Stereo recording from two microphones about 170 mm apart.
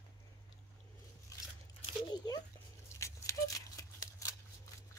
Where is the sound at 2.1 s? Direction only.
25° left (ahead or behind).